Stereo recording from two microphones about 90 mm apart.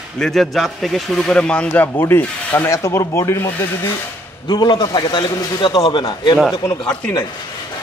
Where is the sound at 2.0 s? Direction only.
25° left (ahead or behind).